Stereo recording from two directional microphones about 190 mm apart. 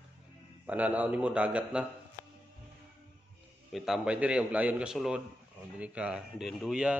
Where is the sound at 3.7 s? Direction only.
Centre (ahead or behind).